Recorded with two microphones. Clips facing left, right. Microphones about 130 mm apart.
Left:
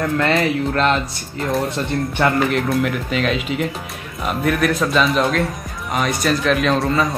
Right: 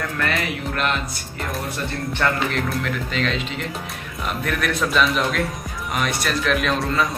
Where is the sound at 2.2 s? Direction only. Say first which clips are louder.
Left 4 dB; 10° left (ahead or behind).